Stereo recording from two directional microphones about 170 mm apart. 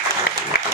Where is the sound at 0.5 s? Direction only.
65° left (ahead or behind).